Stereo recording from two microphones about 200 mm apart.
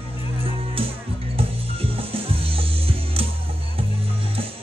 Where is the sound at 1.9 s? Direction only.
30° right (ahead or behind).